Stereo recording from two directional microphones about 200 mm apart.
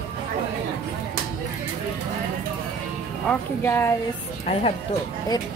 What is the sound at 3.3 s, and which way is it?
Speech, 10° left (ahead or behind).